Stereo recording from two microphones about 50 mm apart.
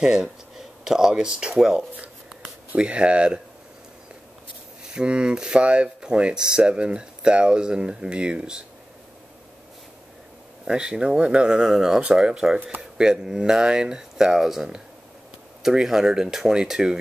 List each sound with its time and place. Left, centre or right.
0.0 s speech: centre
2.7 s speech: right
4.9 s speech: centre
10.7 s speech: centre
12.0 s speech: centre